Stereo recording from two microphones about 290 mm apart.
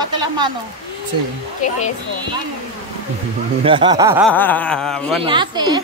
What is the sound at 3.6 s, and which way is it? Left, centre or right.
Speech, centre.